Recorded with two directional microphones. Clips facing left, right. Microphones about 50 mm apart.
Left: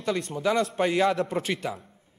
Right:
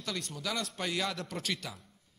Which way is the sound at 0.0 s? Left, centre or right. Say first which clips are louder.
Left 11 dB; left.